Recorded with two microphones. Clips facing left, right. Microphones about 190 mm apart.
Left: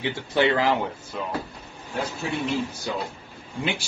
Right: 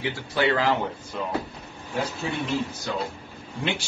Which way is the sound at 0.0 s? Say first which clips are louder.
Left 2 dB; 20° left (ahead or behind).